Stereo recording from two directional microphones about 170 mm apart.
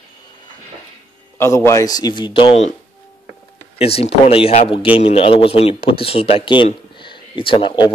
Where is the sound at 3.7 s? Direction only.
35° left (ahead or behind).